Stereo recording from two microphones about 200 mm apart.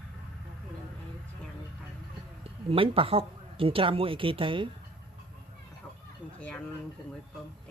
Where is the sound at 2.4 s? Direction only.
25° right (ahead or behind).